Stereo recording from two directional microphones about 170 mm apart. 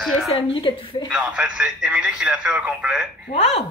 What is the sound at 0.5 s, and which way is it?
Speech, 30° left (ahead or behind).